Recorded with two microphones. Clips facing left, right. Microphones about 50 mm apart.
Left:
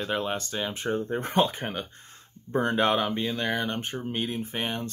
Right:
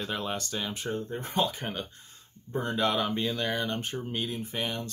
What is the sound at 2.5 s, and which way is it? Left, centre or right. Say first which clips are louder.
Speech: left 6 dB; left.